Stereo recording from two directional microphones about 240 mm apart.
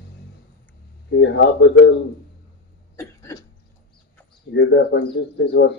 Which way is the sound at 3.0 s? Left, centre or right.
Centre.